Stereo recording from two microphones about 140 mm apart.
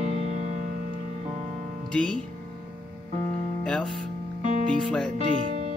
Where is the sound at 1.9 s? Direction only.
5° left (ahead or behind).